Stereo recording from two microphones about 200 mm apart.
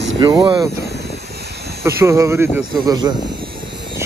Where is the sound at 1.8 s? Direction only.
15° right (ahead or behind).